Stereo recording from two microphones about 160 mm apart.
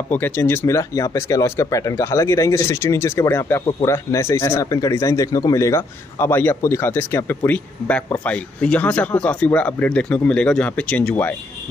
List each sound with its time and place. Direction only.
0.1 s speech: 10° left (ahead or behind)